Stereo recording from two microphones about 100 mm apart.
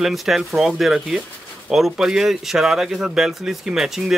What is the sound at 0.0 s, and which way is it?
Speech, centre (ahead or behind).